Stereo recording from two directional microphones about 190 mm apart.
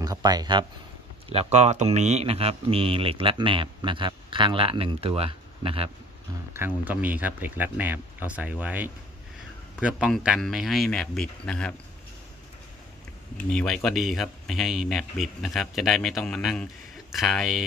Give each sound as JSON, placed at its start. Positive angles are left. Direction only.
{"t": 0.0, "sound": "speech", "side_deg": -20}
{"t": 1.3, "sound": "speech", "side_deg": -35}
{"t": 6.5, "sound": "speech", "side_deg": -10}
{"t": 13.5, "sound": "speech", "side_deg": 5}